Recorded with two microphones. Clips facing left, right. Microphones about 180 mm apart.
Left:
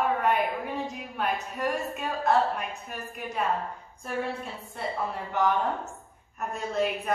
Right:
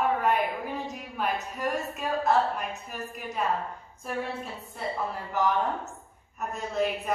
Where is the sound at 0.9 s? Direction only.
Centre (ahead or behind).